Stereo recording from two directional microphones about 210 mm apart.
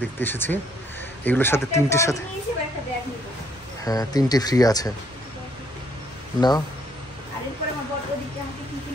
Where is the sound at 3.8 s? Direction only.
15° left (ahead or behind).